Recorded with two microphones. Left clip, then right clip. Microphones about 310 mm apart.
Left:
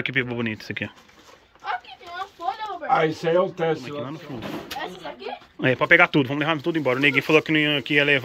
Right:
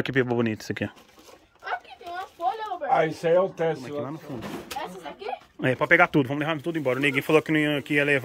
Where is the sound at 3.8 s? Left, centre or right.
Centre.